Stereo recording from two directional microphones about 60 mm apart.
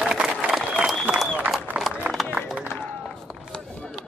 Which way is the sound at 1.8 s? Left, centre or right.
Centre.